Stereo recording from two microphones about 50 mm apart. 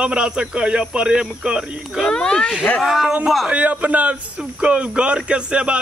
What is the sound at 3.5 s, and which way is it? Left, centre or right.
Speech, right.